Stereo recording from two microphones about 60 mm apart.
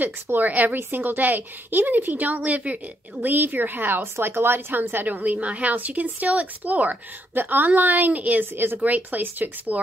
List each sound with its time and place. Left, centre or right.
0.0 s a woman's voice: right